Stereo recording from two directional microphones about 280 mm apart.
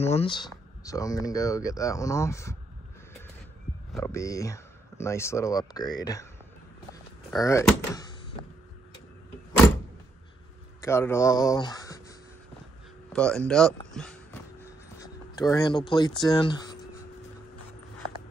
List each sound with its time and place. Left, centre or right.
0.0 s speech: left
3.9 s speech: centre
7.4 s speech: centre
10.8 s speech: centre
13.9 s a sound: centre
15.9 s speech: centre